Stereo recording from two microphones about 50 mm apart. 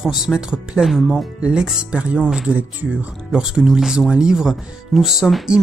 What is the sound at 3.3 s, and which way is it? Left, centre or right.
Speech, centre.